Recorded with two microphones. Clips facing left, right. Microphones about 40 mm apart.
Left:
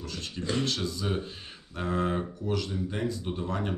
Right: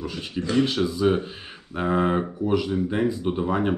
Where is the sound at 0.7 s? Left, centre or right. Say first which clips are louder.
Right 9 dB; centre.